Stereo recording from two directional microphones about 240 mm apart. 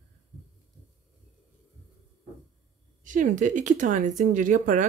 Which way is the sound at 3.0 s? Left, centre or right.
Right.